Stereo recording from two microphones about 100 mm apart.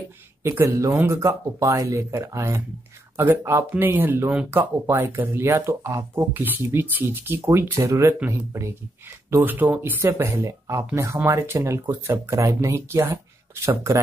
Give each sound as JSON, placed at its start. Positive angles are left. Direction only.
{"t": 0.4, "sound": "speech", "side_deg": -25}